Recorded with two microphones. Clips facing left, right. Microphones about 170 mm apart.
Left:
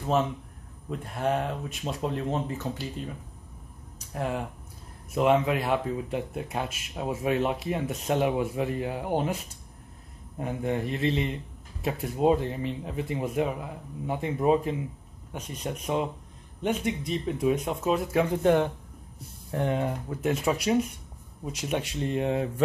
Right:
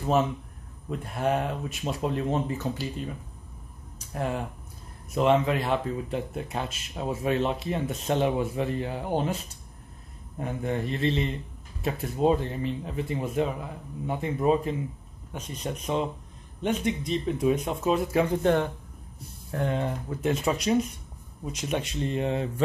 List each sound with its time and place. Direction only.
0.0 s speech: 5° right (ahead or behind)
10.4 s speech: 15° left (ahead or behind)